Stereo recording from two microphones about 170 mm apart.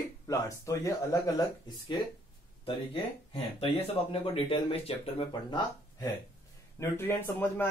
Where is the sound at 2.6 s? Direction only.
30° left (ahead or behind).